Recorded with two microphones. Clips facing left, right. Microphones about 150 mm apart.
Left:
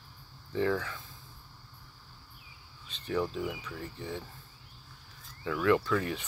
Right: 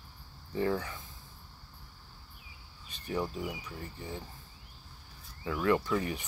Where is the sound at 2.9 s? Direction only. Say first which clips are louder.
Left 3 dB; 10° right (ahead or behind).